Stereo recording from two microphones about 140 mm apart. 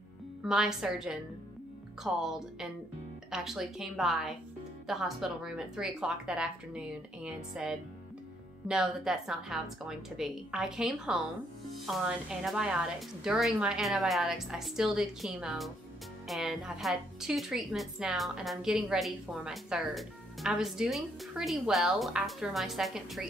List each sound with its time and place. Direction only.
0.4 s a woman's voice: 5° right (ahead or behind)